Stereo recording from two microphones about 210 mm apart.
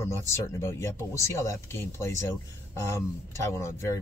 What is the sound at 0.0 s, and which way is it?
Speech, 10° left (ahead or behind).